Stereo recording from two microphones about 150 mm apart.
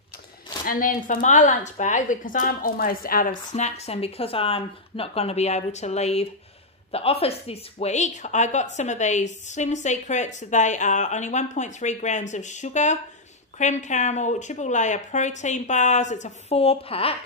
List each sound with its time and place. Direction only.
0.7 s a woman's voice: 65° left (ahead or behind)
3.5 s a woman's voice: 45° left (ahead or behind)